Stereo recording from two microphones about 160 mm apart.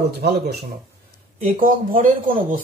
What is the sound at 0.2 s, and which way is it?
Speech, 90° right.